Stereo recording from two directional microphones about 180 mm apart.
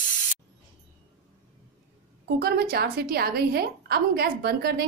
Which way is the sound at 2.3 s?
60° right (ahead or behind).